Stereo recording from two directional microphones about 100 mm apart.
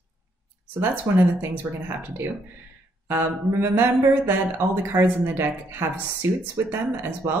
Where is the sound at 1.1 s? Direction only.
20° right (ahead or behind).